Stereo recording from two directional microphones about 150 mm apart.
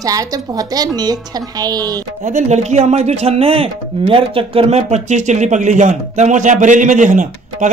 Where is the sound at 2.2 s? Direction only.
50° right (ahead or behind).